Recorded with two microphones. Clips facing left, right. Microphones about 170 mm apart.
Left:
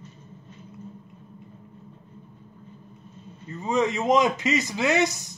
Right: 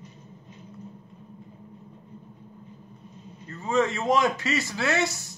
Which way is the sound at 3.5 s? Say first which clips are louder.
Left 1 dB; 15° left (ahead or behind).